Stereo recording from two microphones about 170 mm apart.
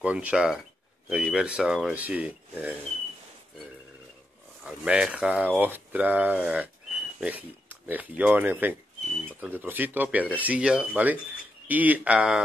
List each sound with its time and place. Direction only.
0.0 s speech: 5° right (ahead or behind)
4.6 s speech: 5° right (ahead or behind)